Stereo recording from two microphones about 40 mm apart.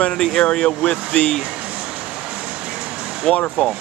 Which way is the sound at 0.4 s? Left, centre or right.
Left.